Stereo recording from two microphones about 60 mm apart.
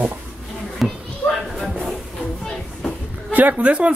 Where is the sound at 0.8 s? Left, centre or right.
Centre.